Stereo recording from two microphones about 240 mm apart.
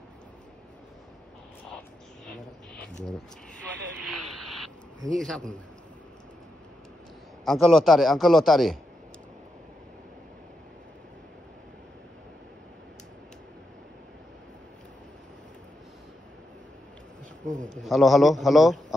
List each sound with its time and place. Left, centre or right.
5.1 s a man's voice: centre
7.4 s a man's voice: centre
17.6 s a man's voice: centre